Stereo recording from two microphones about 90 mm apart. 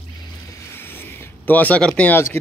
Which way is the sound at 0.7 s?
25° left (ahead or behind).